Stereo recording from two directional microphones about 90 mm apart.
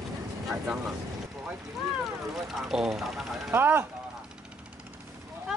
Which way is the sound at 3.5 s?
25° right (ahead or behind).